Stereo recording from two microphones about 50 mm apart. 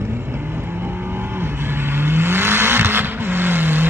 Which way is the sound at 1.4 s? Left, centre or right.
Right.